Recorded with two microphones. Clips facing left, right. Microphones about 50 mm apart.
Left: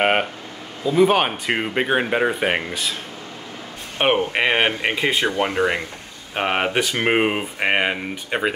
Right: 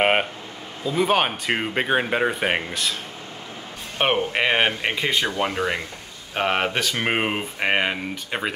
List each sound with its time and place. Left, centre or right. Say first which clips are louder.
0.0 s speech: left 1 dB; centre
4.0 s speech: left 2 dB; centre
5.1 s speech: left 2 dB; left
5.4 s speech: left 3 dB; centre
7.1 s speech: left 4 dB; centre